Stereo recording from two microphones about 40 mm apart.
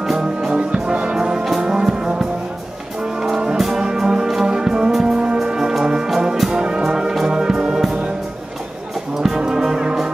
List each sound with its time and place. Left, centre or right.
0.0 s music: centre
0.5 s music: centre
1.1 s brass instrument: centre
1.6 s music: centre
5.0 s brass instrument: right
5.4 s music: centre
6.0 s brass instrument: centre
6.5 s music: centre
9.2 s brass instrument: centre